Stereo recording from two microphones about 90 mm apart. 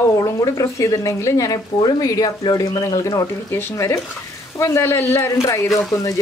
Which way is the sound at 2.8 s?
35° left (ahead or behind).